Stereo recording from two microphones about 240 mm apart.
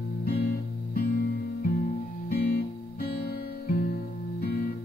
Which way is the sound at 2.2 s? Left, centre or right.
Left.